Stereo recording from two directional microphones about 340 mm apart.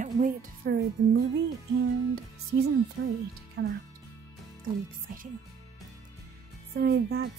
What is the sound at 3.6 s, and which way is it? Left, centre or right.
Speech, right.